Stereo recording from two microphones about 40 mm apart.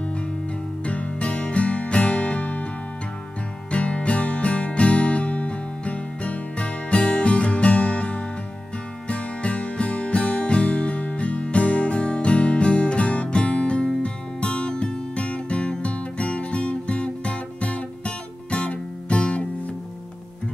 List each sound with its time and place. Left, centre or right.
0.8 s music: left
3.7 s music: left